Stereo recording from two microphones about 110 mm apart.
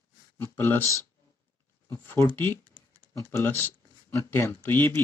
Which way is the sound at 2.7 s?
40° right (ahead or behind).